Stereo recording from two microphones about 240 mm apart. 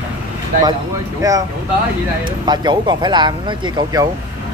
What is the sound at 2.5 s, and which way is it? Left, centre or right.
Speech, centre.